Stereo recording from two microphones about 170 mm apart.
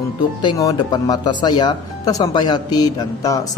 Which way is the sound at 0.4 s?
25° left (ahead or behind).